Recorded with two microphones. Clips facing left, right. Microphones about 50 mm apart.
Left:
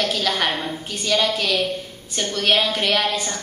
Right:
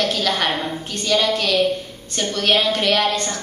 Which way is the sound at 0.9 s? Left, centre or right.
Centre.